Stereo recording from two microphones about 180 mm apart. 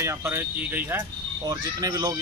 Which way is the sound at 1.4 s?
20° right (ahead or behind).